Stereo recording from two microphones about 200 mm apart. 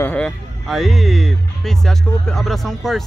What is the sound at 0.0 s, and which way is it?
Speech, 5° left (ahead or behind).